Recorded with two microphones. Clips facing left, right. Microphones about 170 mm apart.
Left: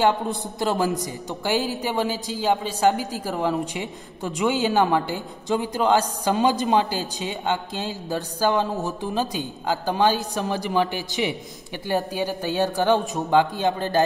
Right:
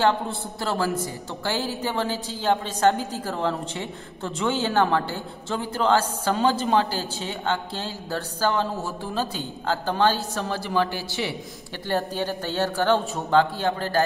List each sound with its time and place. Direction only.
0.0 s a woman's voice: 15° left (ahead or behind)